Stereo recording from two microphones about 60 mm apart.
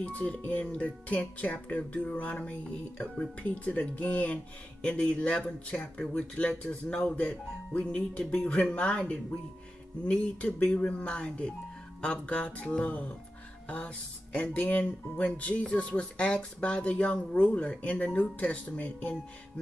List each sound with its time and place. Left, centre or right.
0.0 s speech: left